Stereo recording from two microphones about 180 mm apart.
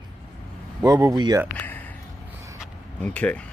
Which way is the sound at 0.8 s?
20° right (ahead or behind).